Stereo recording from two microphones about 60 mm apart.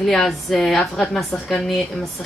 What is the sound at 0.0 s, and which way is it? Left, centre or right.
A woman's voice, centre.